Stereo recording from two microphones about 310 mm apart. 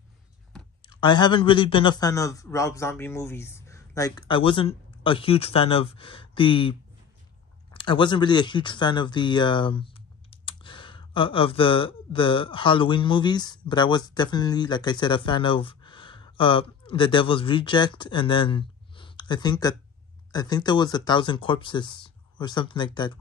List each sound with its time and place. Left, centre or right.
0.8 s a man's voice: centre